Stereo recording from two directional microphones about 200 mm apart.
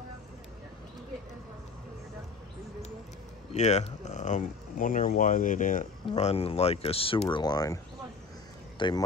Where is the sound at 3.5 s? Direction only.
35° left (ahead or behind); by 7.8 s 20° left (ahead or behind).